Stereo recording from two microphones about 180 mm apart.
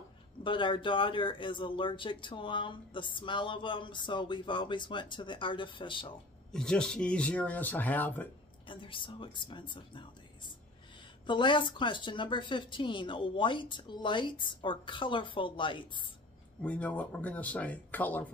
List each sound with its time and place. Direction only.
0.4 s speech: 25° left (ahead or behind)
6.5 s speech: 5° left (ahead or behind)
8.6 s speech: 30° left (ahead or behind)
11.2 s speech: 25° left (ahead or behind)
16.6 s speech: 5° left (ahead or behind)